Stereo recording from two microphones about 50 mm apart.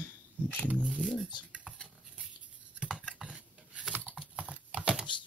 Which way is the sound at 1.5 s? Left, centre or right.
Right.